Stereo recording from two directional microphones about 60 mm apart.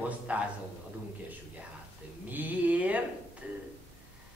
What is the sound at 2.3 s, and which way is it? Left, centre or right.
Speech, right.